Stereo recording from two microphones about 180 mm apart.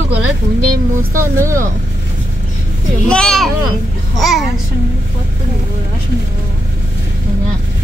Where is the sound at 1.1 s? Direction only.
15° right (ahead or behind).